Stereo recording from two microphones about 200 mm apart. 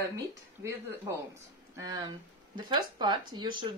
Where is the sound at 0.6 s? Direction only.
15° right (ahead or behind).